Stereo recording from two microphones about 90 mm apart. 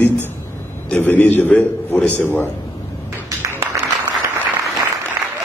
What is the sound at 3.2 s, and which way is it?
Music, 30° right (ahead or behind).